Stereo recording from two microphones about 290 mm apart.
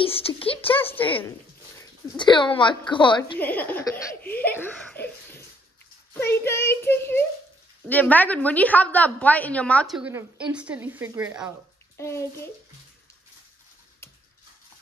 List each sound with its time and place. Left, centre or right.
0.0 s a child's voice: centre
3.3 s a child's voice: centre
12.0 s a child's voice: centre